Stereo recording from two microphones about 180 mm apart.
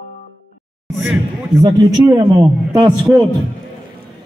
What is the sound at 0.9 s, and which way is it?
Speech, centre (ahead or behind).